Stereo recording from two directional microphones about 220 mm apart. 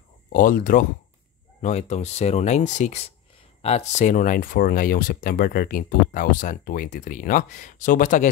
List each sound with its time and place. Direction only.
0.3 s speech: 35° left (ahead or behind)